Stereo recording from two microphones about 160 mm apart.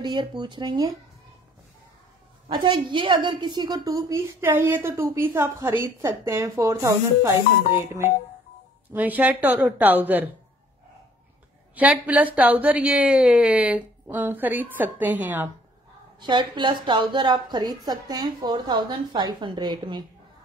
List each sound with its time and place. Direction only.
0.0 s a woman's voice: 30° right (ahead or behind)
2.4 s a woman's voice: 30° right (ahead or behind)
8.9 s a woman's voice: 10° right (ahead or behind)
11.7 s a woman's voice: 10° right (ahead or behind)
16.2 s a woman's voice: 30° right (ahead or behind)